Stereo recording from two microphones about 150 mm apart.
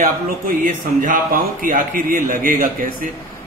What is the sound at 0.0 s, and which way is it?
A man's voice, 60° right (ahead or behind).